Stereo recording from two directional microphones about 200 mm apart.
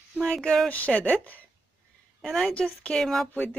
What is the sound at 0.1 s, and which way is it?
A woman's voice, 5° left (ahead or behind).